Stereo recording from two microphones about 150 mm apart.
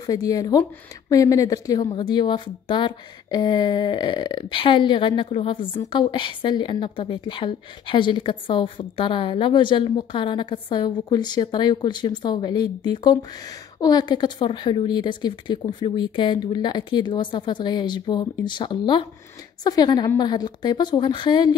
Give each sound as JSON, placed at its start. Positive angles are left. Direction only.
{"t": 0.0, "sound": "a woman's voice", "side_deg": 25}